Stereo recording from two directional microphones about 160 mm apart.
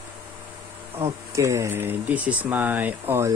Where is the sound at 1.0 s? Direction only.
20° right (ahead or behind).